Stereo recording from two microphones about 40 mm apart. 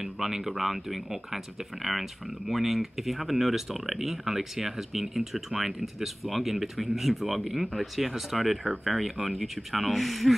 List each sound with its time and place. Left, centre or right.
0.0 s speech: centre
8.4 s speech: centre
8.8 s speech: centre